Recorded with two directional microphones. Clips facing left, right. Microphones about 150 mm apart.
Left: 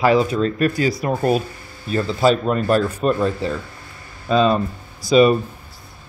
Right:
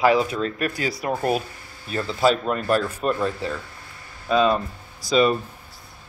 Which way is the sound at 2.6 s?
30° left (ahead or behind).